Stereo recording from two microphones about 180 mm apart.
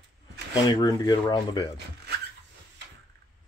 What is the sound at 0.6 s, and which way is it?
Speech, 25° left (ahead or behind).